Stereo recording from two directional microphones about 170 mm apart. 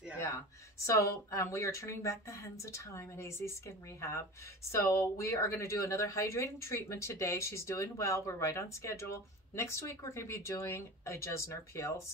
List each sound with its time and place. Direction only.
0.8 s speech: 15° left (ahead or behind)